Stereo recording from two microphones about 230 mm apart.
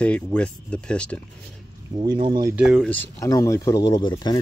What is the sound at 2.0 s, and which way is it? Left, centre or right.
Speech, right.